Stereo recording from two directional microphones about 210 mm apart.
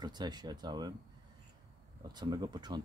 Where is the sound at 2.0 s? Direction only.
20° right (ahead or behind).